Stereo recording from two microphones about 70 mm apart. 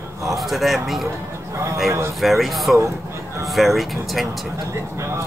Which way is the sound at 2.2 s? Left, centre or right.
Centre.